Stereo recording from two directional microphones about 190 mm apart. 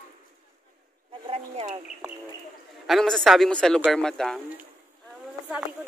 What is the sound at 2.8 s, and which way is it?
Speech, centre (ahead or behind).